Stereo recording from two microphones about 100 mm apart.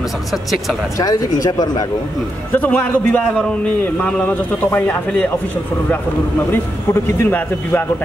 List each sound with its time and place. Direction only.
0.3 s speech: centre (ahead or behind)
0.9 s speech: 35° left (ahead or behind)
2.5 s speech: 15° left (ahead or behind)
3.3 s speech: 5° left (ahead or behind)
6.5 s a man's voice: 25° left (ahead or behind)